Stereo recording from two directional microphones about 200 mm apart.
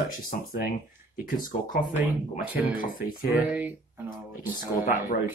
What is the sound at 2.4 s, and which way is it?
Speech, 10° right (ahead or behind).